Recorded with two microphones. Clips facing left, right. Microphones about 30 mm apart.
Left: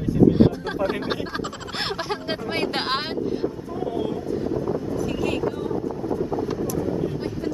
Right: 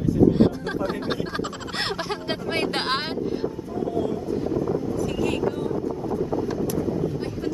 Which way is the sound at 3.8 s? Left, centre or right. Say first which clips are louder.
Right 1 dB; left.